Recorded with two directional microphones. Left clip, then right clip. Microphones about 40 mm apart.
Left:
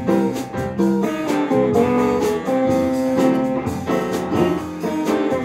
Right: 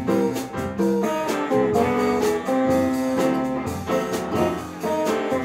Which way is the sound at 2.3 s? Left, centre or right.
Centre.